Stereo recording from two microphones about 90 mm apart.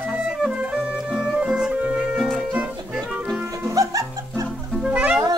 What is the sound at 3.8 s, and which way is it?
Music, 35° right (ahead or behind).